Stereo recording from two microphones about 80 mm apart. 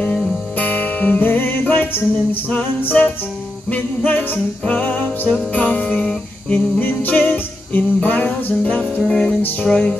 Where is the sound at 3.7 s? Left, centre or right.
Left.